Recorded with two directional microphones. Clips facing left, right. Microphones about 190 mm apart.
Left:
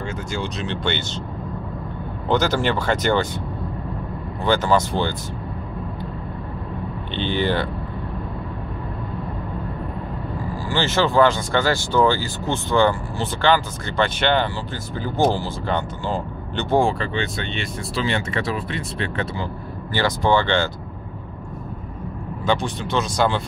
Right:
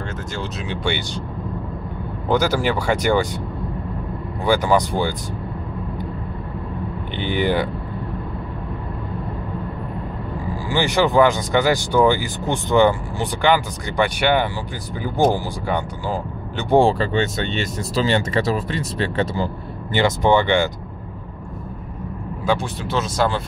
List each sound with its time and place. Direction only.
0.3 s speech: 5° right (ahead or behind)
2.2 s speech: 10° right (ahead or behind)
4.5 s speech: 15° right (ahead or behind)
7.2 s speech: 15° right (ahead or behind)
10.7 s speech: 15° right (ahead or behind)
16.7 s speech: 35° right (ahead or behind)
19.9 s speech: 20° right (ahead or behind)
22.5 s speech: 5° right (ahead or behind)